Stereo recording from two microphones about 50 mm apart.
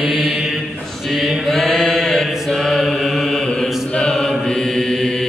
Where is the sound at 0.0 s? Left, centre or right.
Centre.